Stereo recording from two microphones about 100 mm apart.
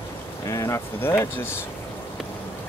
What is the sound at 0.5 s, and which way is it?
Speech, 30° left (ahead or behind).